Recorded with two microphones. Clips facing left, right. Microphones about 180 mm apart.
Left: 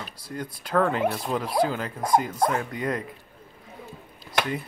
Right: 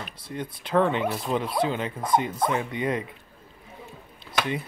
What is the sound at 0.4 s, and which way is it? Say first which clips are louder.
Speech: right 1 dB; 25° right (ahead or behind).